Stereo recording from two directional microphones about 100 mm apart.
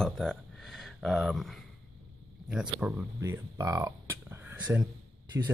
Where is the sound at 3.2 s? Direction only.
35° right (ahead or behind).